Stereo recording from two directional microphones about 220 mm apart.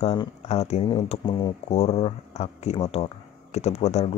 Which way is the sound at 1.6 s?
30° left (ahead or behind).